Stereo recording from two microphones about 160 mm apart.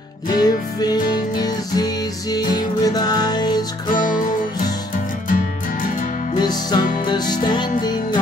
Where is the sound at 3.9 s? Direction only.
60° left (ahead or behind).